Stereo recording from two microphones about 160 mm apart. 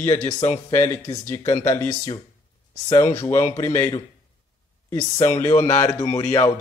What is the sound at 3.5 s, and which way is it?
Speech, 15° left (ahead or behind).